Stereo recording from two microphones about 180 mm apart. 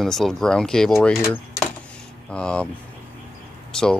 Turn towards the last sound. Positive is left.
turn(degrees=5)  # may be behind; listen again after turning